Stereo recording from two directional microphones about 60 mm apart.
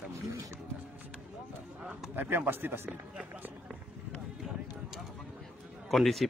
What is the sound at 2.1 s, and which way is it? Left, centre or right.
Speech, right.